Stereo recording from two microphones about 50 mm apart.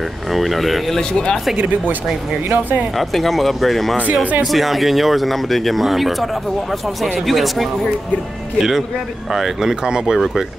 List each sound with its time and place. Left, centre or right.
0.3 s speech: centre
2.5 s speech: right
3.0 s speech: centre